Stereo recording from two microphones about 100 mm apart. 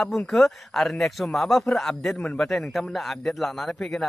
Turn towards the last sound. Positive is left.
turn(degrees=5)  # may be behind; listen again after turning